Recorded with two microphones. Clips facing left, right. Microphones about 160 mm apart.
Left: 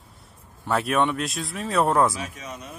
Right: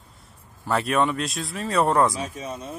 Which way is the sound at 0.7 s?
Centre (ahead or behind).